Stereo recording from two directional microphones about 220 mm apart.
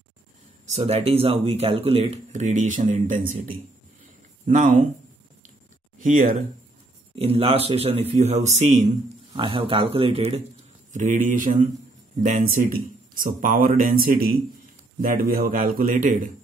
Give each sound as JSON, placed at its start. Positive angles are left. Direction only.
{"t": 0.7, "sound": "speech", "side_deg": -30}
{"t": 5.9, "sound": "a sound", "side_deg": -35}
{"t": 7.2, "sound": "speech", "side_deg": -25}